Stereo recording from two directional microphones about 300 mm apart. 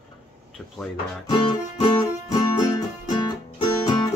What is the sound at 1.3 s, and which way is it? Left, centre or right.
Music, centre.